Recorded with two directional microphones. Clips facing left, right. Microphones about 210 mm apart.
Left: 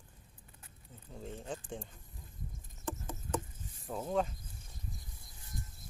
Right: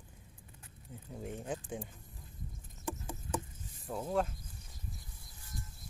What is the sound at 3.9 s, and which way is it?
Speech, centre (ahead or behind).